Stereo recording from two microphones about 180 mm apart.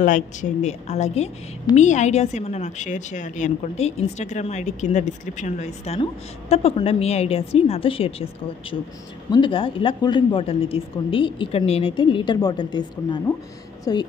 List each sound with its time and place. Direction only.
0.0 s a woman's voice: 45° left (ahead or behind); by 14.0 s 20° left (ahead or behind)